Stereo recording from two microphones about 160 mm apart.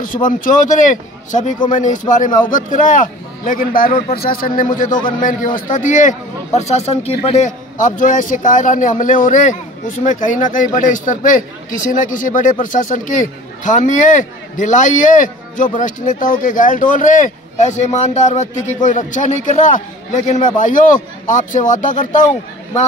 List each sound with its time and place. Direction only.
0.0 s a man's voice: 60° left (ahead or behind)
5.7 s a man's voice: 50° left (ahead or behind)
7.7 s a man's voice: 55° left (ahead or behind)